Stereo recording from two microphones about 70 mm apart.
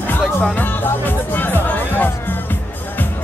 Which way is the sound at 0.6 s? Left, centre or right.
Left.